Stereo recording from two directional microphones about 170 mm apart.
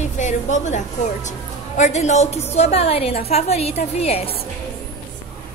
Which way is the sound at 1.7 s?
45° left (ahead or behind).